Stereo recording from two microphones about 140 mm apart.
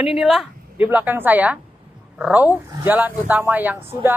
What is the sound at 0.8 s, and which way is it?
Speech, 15° right (ahead or behind).